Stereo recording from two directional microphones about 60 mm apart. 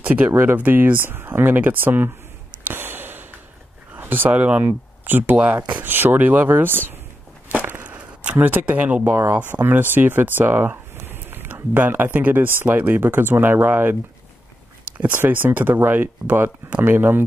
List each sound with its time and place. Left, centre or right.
0.0 s speech: right
0.3 s speech: right
0.6 s speech: right
2.6 s a sound: right
4.3 s speech: right
4.6 s speech: right
5.9 s speech: right
7.5 s a sound: right
9.1 s speech: right
9.4 s speech: right
15.0 s speech: right